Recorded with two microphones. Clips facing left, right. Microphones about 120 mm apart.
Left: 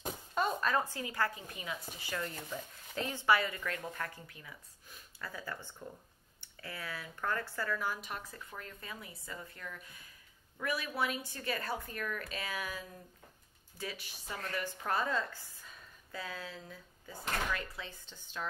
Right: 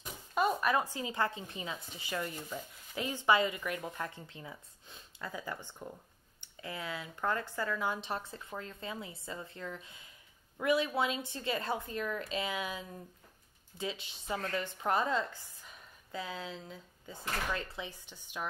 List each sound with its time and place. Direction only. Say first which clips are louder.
0.3 s speech: right 3 dB; 10° right (ahead or behind); by 17.8 s 25° right (ahead or behind)
17.8 s speech: right 3 dB; 15° right (ahead or behind)